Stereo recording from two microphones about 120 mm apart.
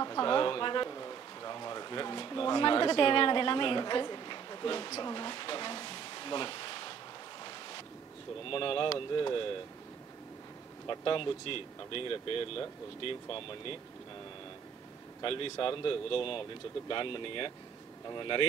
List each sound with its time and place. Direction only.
0.0 s a sound: 35° left (ahead or behind)
8.5 s speech: 50° left (ahead or behind)
10.9 s speech: 45° left (ahead or behind)
15.2 s speech: 50° left (ahead or behind)